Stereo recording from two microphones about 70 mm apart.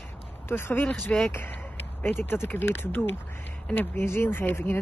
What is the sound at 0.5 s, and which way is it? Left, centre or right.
A woman's voice, left.